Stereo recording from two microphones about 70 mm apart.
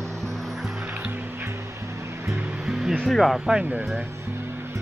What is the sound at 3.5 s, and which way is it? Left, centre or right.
Speech, right.